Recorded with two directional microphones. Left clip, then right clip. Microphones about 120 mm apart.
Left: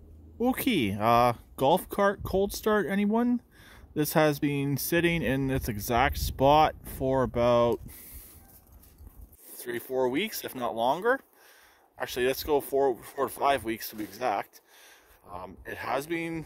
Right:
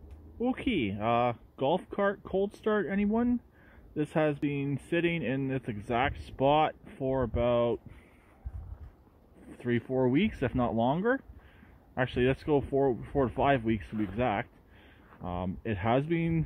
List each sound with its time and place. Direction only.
0.4 s speech: 65° left (ahead or behind)
1.9 s speech: 45° left (ahead or behind)
3.9 s speech: 65° left (ahead or behind)
9.6 s speech: 40° left (ahead or behind)